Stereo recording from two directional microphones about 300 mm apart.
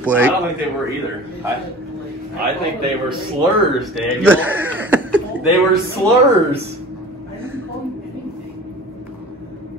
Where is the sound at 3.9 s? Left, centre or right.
Centre.